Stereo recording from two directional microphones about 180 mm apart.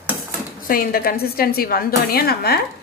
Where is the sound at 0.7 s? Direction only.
55° left (ahead or behind).